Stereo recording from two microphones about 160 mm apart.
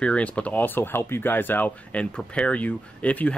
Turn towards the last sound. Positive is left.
turn(degrees=10)  # may be behind; listen again after turning